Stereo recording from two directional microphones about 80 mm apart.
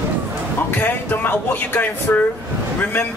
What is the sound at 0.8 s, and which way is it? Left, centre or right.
Speech, left.